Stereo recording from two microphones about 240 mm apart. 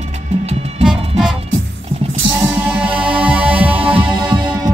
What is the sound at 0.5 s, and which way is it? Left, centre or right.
Music, right.